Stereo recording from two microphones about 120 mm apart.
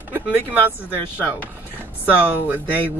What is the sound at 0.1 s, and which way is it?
Speech, 15° right (ahead or behind).